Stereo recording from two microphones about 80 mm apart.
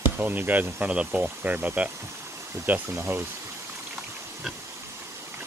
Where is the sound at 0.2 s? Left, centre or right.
Right.